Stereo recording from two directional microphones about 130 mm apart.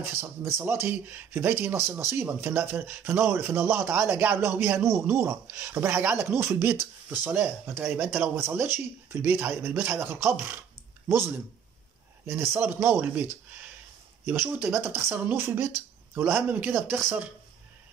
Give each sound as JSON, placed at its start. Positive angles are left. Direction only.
{"t": 0.2, "sound": "speech", "side_deg": -20}
{"t": 12.3, "sound": "speech", "side_deg": -15}